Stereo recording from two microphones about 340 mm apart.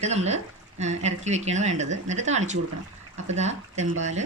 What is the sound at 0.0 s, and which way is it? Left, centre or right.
Speech, centre.